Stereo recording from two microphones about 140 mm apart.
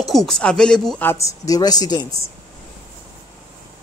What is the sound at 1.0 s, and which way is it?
A woman's voice, 20° left (ahead or behind).